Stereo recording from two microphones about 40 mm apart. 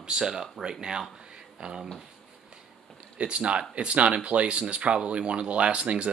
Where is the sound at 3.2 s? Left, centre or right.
Right.